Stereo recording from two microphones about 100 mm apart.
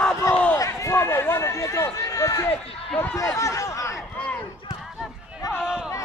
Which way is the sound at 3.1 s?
30° left (ahead or behind).